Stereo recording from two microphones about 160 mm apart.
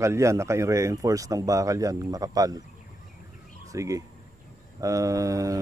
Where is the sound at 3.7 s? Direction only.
20° right (ahead or behind).